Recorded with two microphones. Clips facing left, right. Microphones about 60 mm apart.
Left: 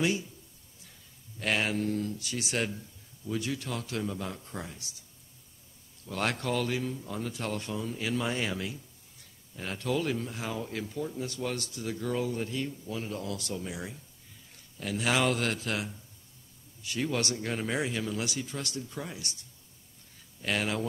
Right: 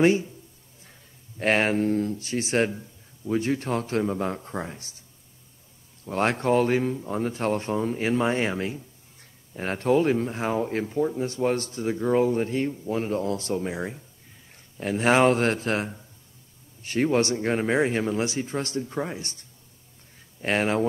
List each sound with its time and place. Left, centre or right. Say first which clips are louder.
0.0 s speech: right 10 dB; right
1.4 s speech: right 7 dB; right
6.0 s speech: right 8 dB; right